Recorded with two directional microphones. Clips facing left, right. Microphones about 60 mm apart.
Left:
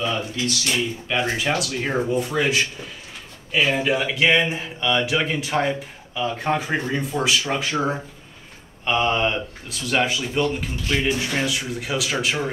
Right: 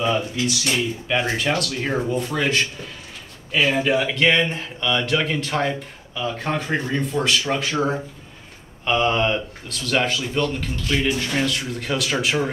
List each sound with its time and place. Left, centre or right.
1.0 s speech: centre